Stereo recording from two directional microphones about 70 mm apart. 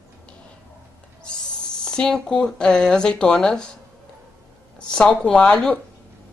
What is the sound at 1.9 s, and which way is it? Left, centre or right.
A woman's voice, centre.